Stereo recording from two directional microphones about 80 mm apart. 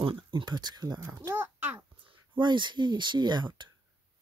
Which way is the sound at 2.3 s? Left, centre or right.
Right.